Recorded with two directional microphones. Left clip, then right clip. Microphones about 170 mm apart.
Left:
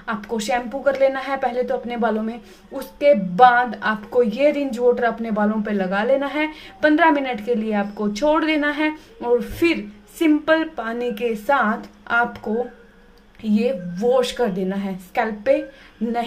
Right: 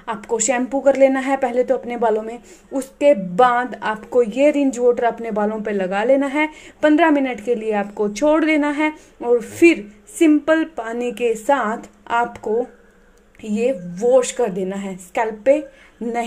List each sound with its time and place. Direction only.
0.0 s a woman's voice: 20° right (ahead or behind)
13.4 s speech: 15° right (ahead or behind)